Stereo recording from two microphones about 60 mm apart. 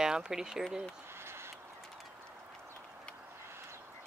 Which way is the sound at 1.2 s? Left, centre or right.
Right.